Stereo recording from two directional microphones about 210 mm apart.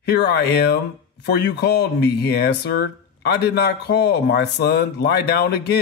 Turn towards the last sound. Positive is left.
turn(degrees=50)  # may be behind; listen again after turning